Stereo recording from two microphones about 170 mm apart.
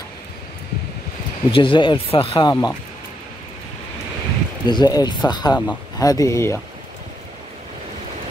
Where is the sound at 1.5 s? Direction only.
30° left (ahead or behind).